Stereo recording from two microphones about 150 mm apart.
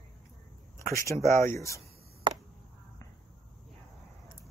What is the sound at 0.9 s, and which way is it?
Speech, 20° left (ahead or behind).